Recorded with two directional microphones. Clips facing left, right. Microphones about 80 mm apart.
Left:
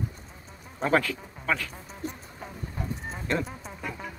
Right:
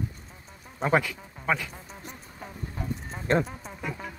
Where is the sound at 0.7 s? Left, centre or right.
Centre.